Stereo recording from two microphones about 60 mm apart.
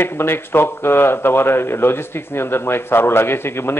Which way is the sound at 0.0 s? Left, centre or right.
Left.